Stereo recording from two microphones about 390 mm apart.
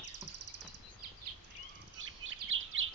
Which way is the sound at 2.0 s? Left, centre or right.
Right.